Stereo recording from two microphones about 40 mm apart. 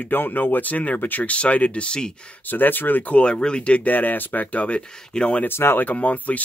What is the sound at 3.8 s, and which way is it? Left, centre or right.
Speech, left.